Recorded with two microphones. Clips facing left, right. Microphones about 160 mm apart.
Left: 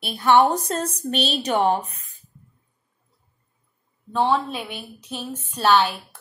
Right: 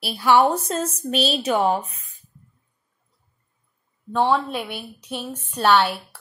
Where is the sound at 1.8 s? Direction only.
35° left (ahead or behind).